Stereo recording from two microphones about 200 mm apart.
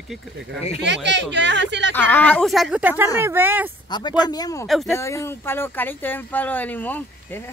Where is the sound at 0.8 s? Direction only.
60° right (ahead or behind).